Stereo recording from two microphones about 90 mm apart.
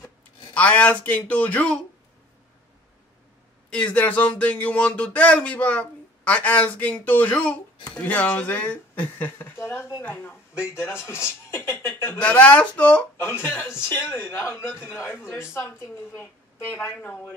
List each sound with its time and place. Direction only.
0.6 s speech: 15° left (ahead or behind)
3.7 s speech: 15° left (ahead or behind)
12.2 s speech: 15° left (ahead or behind)
13.2 s a woman's voice: 25° left (ahead or behind)